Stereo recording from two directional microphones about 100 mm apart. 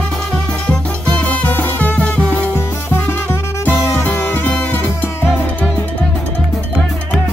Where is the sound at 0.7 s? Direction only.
15° left (ahead or behind).